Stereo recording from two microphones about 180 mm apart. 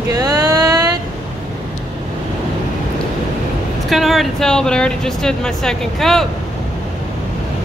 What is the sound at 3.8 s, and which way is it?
Speech, centre (ahead or behind).